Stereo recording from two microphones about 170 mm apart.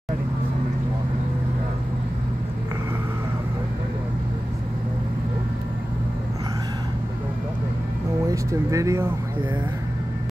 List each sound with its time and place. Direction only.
8.3 s speech: 20° right (ahead or behind)